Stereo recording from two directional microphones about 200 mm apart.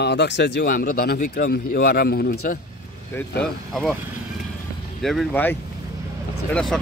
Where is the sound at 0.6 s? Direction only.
45° left (ahead or behind).